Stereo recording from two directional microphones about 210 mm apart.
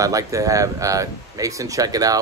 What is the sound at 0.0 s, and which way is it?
Speech, 15° right (ahead or behind).